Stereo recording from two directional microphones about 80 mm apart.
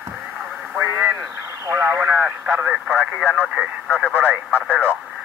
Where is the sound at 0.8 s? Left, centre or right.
Right.